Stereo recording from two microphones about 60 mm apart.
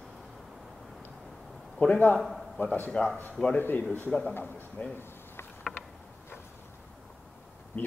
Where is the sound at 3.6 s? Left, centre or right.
Left.